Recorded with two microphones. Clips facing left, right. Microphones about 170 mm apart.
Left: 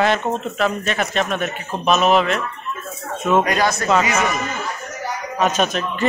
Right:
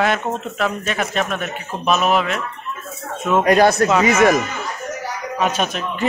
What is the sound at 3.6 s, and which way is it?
Speech, 60° right (ahead or behind).